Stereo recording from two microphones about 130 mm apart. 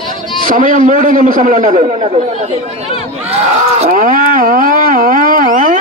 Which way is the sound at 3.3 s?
50° right (ahead or behind).